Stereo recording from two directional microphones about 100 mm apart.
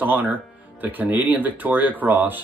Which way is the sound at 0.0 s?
15° right (ahead or behind).